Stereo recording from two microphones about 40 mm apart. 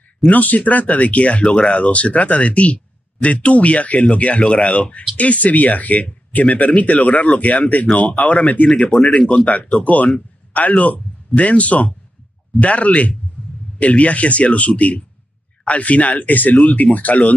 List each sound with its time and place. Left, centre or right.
0.2 s speech: left